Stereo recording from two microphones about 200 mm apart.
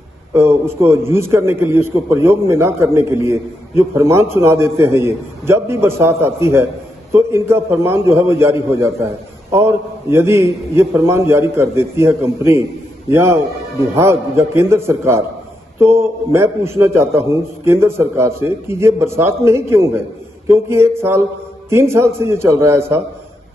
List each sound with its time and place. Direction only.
0.3 s a man's voice: 10° right (ahead or behind)